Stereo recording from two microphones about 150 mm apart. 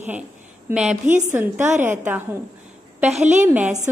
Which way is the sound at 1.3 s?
15° right (ahead or behind).